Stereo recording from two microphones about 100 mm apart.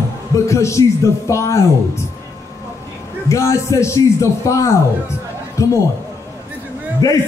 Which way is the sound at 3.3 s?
30° left (ahead or behind).